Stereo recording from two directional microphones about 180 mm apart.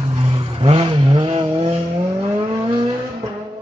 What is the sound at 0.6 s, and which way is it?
Vehicle, 30° right (ahead or behind).